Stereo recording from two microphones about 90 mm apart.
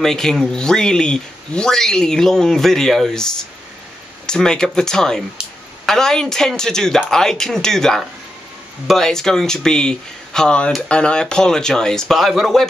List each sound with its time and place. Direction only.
0.0 s speech: 5° left (ahead or behind)
4.3 s speech: 5° left (ahead or behind)